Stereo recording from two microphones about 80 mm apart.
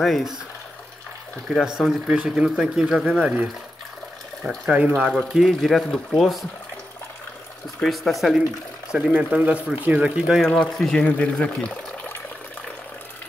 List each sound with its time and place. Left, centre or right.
0.0 s speech: centre
1.5 s speech: centre
4.6 s speech: centre
5.1 s speech: centre
7.8 s speech: centre
9.1 s speech: centre
10.7 s speech: centre
11.0 s speech: centre